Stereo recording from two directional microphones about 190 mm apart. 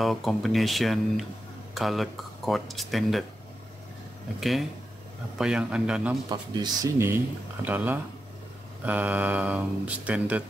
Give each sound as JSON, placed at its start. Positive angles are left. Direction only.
{"t": 0.0, "sound": "speech", "side_deg": 0}
{"t": 4.4, "sound": "speech", "side_deg": 0}
{"t": 6.2, "sound": "speech", "side_deg": -20}